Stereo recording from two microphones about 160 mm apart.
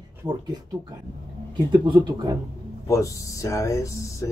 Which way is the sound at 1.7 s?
30° right (ahead or behind).